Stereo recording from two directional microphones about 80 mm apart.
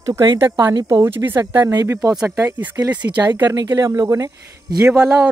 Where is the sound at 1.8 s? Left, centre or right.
Right.